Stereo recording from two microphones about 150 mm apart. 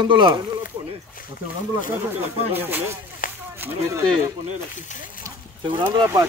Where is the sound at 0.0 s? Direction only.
30° right (ahead or behind).